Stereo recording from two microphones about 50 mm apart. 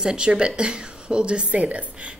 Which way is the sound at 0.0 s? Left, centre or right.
Centre.